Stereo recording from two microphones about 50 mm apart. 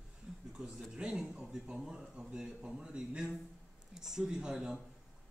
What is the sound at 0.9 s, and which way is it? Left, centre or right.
A man's voice, centre.